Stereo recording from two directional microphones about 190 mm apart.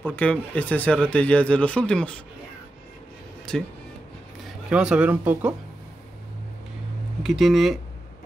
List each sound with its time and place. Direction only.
0.0 s speech: 10° left (ahead or behind)
3.5 s speech: 5° left (ahead or behind)
4.6 s speech: 5° right (ahead or behind)
7.2 s speech: centre (ahead or behind)